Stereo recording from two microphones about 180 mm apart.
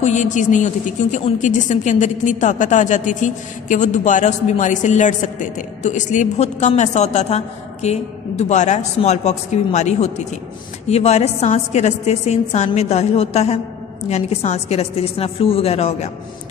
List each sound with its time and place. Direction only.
0.0 s a woman's voice: 40° left (ahead or behind)